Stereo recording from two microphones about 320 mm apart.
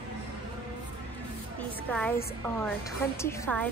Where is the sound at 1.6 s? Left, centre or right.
Centre.